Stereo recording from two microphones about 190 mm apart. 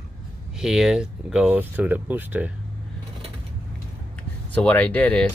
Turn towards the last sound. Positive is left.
turn(degrees=5)  # may be behind; listen again after turning